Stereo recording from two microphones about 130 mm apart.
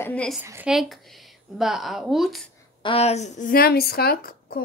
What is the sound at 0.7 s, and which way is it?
A woman's voice, centre (ahead or behind).